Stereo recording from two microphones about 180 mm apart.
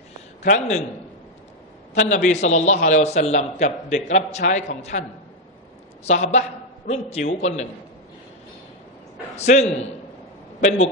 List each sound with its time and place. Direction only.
0.5 s a man's voice: 40° left (ahead or behind)
2.0 s a man's voice: 40° left (ahead or behind)
6.0 s a man's voice: 40° left (ahead or behind)
9.4 s a man's voice: 40° left (ahead or behind)